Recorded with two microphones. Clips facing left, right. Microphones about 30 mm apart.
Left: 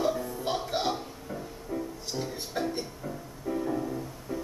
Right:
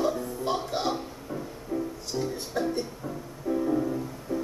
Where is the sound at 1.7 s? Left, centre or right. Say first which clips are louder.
Right 3 dB; centre.